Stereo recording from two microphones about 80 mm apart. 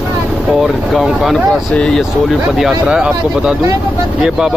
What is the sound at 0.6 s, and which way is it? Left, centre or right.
Speech, centre.